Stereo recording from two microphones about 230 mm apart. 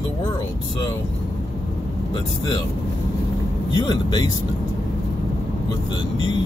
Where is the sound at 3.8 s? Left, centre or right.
Centre.